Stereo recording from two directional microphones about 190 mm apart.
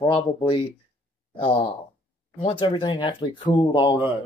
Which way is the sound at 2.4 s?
30° left (ahead or behind).